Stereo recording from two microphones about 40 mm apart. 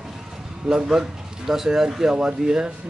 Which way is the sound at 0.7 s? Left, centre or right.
Centre.